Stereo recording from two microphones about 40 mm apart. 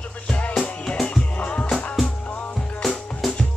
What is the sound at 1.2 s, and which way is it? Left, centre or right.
Music, left.